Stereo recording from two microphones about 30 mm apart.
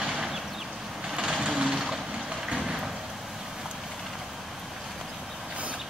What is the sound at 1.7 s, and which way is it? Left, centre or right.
Vehicle, centre.